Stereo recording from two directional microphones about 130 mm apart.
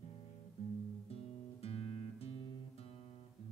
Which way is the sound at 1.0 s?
50° left (ahead or behind).